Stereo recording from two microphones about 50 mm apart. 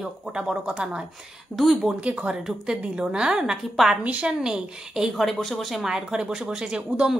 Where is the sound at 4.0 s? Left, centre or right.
Right.